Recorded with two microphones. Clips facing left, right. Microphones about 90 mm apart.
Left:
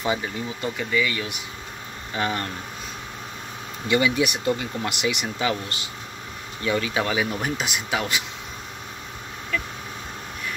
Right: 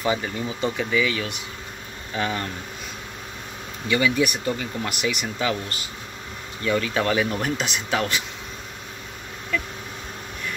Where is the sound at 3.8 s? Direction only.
25° left (ahead or behind).